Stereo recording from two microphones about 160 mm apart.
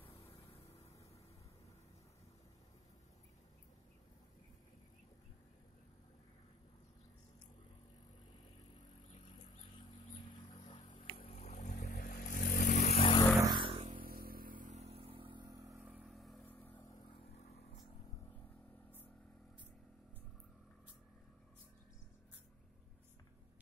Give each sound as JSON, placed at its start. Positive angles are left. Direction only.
{"t": 10.3, "sound": "a sound", "side_deg": 35}
{"t": 11.1, "sound": "vehicle", "side_deg": 50}
{"t": 13.4, "sound": "a sound", "side_deg": -30}
{"t": 13.8, "sound": "vehicle", "side_deg": -65}
{"t": 16.0, "sound": "vehicle", "side_deg": 0}
{"t": 16.4, "sound": "vehicle", "side_deg": 10}
{"t": 16.8, "sound": "vehicle", "side_deg": 25}
{"t": 17.4, "sound": "vehicle", "side_deg": 40}